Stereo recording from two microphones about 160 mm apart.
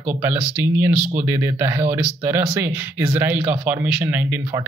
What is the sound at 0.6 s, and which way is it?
Speech, 15° right (ahead or behind).